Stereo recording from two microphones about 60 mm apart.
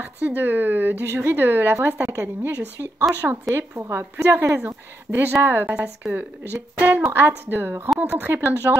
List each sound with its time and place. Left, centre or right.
0.0 s a woman's voice: right
5.1 s a woman's voice: right
5.7 s speech: right
6.5 s a woman's voice: right
8.3 s speech: right